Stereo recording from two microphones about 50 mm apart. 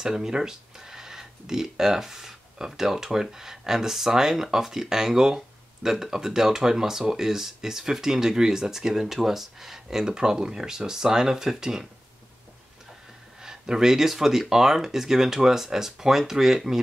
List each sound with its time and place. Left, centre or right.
0.0 s speech: centre
13.4 s speech: centre